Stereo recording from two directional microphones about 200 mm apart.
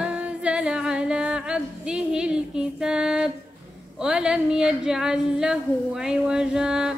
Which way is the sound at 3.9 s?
5° right (ahead or behind).